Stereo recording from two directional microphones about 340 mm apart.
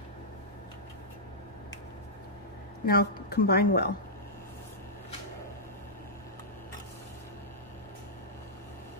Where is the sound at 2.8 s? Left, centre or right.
Left.